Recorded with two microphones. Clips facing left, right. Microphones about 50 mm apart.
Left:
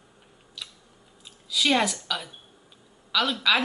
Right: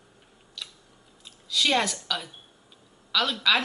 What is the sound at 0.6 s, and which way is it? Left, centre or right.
Scissors, centre.